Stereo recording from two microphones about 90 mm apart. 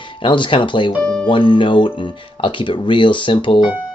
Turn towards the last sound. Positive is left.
turn(degrees=65)  # may be behind; listen again after turning